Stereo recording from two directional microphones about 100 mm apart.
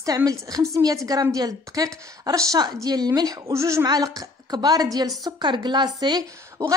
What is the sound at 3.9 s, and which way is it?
A woman's voice, 40° right (ahead or behind).